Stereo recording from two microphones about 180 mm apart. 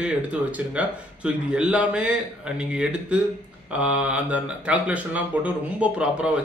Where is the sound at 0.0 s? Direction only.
5° right (ahead or behind).